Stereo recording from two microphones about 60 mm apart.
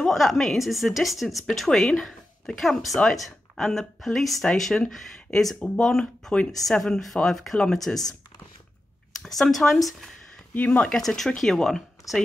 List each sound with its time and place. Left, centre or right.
0.1 s a woman's voice: centre
9.4 s a woman's voice: centre
10.5 s speech: left
10.8 s a woman's voice: centre
12.0 s a sound: left